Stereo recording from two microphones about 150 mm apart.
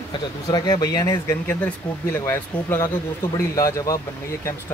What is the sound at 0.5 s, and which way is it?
Speech, 25° left (ahead or behind).